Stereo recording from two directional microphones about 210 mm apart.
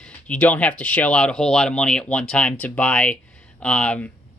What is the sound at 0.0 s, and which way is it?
Speech, 5° left (ahead or behind).